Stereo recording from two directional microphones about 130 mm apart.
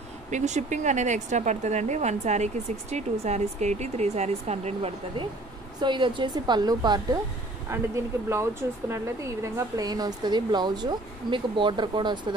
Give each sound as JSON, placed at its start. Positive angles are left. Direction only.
{"t": 0.3, "sound": "speech", "side_deg": -65}
{"t": 5.8, "sound": "a woman's voice", "side_deg": -40}
{"t": 7.7, "sound": "a woman's voice", "side_deg": -20}